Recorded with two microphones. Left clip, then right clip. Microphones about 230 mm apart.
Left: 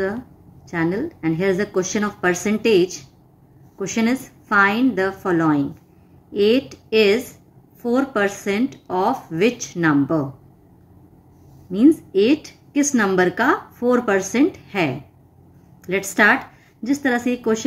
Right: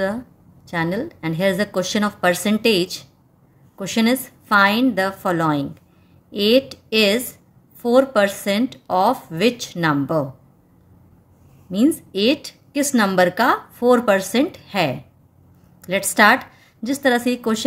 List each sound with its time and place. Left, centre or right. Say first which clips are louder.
0.7 s a woman's voice: left 1 dB; right
11.7 s a woman's voice: left 4 dB; right